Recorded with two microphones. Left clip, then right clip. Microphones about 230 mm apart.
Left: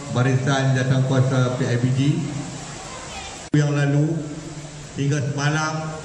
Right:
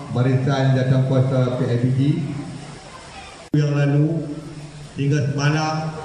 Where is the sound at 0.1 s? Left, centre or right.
Left.